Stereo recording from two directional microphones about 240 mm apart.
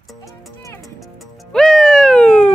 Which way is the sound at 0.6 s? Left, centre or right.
Centre.